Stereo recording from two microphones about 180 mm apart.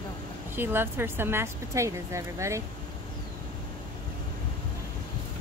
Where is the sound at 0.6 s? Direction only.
10° right (ahead or behind).